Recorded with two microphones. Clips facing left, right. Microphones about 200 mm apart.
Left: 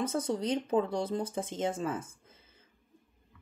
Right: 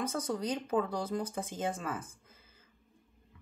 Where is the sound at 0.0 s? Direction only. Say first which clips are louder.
Left 3 dB; 25° left (ahead or behind).